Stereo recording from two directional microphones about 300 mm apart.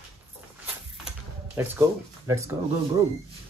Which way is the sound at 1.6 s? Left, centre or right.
Centre.